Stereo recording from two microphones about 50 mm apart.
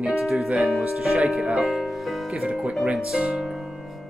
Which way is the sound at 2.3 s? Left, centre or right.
Centre.